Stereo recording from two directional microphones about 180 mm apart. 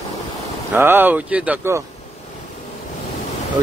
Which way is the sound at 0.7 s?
10° right (ahead or behind).